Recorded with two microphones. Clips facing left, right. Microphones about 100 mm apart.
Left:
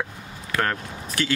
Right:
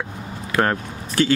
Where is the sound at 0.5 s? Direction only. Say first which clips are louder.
Right 5 dB; 30° right (ahead or behind).